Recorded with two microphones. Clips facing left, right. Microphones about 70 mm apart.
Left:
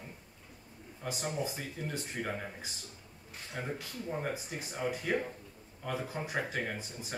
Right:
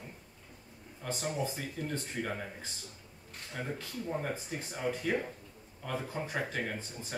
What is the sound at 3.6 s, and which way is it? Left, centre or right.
Speech, centre.